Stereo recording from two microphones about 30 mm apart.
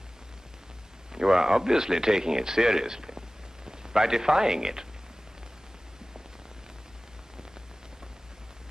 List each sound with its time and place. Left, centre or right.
1.1 s speech: centre